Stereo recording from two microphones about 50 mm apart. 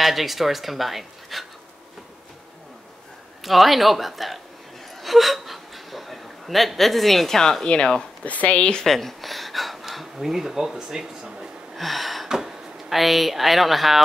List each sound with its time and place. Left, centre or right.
0.0 s speech: centre
3.4 s speech: centre
8.8 s speech: centre
11.7 s a sound: centre
12.3 s speech: centre